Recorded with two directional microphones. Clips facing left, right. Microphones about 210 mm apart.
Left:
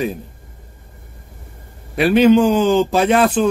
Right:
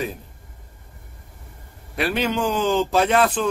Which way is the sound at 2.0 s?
15° left (ahead or behind).